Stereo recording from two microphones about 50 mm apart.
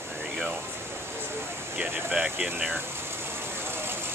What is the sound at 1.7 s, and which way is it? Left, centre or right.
Speech, right.